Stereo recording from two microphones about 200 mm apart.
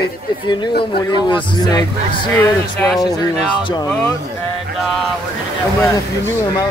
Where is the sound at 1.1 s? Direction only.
20° left (ahead or behind).